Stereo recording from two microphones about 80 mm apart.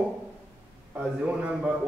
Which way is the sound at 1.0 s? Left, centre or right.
Centre.